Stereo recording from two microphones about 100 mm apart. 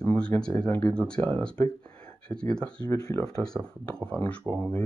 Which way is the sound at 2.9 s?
30° left (ahead or behind).